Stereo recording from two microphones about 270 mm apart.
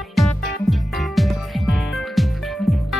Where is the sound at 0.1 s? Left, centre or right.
Centre.